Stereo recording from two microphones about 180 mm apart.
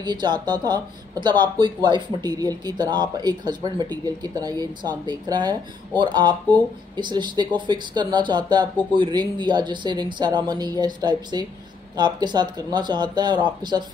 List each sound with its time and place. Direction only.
0.0 s speech: 25° right (ahead or behind)